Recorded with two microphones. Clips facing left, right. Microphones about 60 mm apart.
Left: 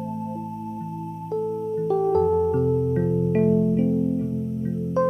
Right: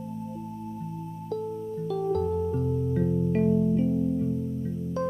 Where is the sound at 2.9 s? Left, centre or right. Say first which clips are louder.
Left 4 dB; left.